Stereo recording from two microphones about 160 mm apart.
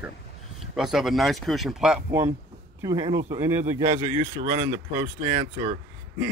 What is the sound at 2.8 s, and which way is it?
Speech, 25° right (ahead or behind).